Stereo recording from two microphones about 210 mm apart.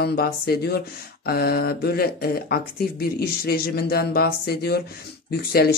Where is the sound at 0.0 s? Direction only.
50° left (ahead or behind).